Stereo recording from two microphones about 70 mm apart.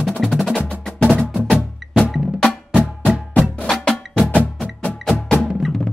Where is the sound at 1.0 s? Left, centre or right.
Centre.